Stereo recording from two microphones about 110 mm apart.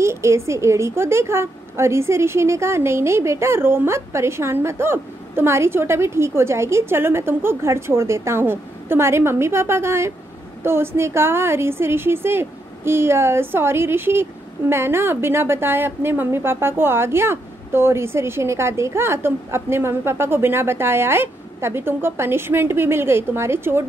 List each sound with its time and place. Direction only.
0.0 s a woman's voice: 25° right (ahead or behind)